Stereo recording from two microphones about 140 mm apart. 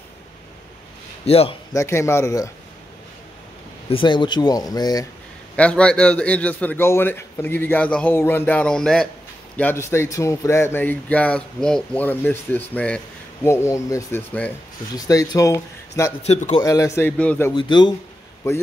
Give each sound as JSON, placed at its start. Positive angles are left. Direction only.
{"t": 1.2, "sound": "a man's voice", "side_deg": 45}
{"t": 1.7, "sound": "speech", "side_deg": 20}
{"t": 3.9, "sound": "speech", "side_deg": 35}
{"t": 5.6, "sound": "speech", "side_deg": 10}
{"t": 9.6, "sound": "speech", "side_deg": 15}
{"t": 13.5, "sound": "speech", "side_deg": 20}
{"t": 16.2, "sound": "a man's voice", "side_deg": 50}
{"t": 16.6, "sound": "speech", "side_deg": 25}
{"t": 17.2, "sound": "speech", "side_deg": 10}
{"t": 17.6, "sound": "speech", "side_deg": 30}